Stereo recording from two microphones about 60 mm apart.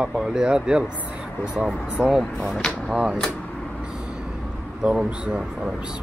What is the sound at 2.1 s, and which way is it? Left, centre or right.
Speech, centre.